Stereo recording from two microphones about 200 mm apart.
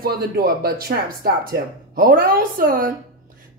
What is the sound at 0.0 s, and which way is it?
Speech, 50° right (ahead or behind).